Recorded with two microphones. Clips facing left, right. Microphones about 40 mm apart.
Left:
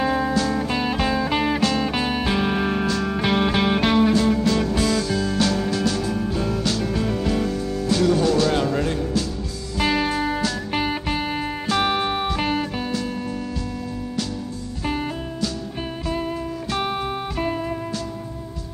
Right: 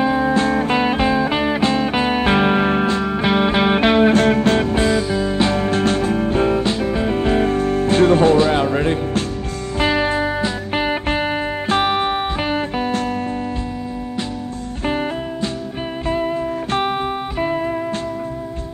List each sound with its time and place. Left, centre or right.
0.0 s music: centre
0.3 s music: right
1.3 s music: centre
1.6 s music: right
4.1 s music: right
14.9 s music: right
16.1 s music: right